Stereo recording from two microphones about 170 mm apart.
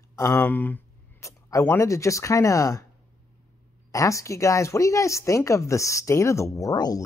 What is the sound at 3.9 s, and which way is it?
Speech, 20° left (ahead or behind).